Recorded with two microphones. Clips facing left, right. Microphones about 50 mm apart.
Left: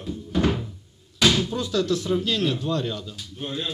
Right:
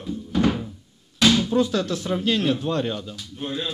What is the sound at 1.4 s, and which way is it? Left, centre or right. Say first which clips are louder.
Speech: right 3 dB; right.